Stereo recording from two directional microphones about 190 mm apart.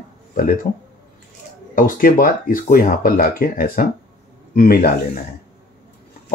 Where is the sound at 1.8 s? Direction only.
45° left (ahead or behind).